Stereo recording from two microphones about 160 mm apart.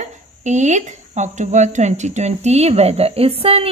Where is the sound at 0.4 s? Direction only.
50° right (ahead or behind).